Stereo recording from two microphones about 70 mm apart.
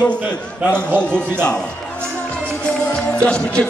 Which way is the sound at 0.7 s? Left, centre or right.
Centre.